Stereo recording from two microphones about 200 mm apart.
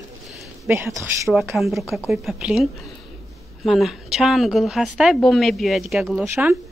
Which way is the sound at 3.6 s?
Centre (ahead or behind).